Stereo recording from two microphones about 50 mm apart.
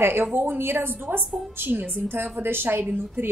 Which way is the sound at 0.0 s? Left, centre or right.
Right.